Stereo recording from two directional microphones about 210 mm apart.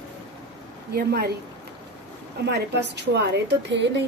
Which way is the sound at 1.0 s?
50° right (ahead or behind).